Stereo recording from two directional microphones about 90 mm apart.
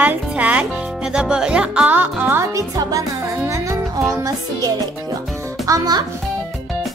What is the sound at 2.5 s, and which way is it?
Speech, 40° right (ahead or behind).